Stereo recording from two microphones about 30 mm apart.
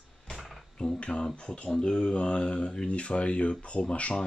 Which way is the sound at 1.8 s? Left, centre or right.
Left.